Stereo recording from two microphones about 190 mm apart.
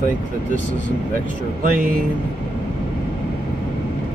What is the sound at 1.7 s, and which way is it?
Speech, 50° right (ahead or behind).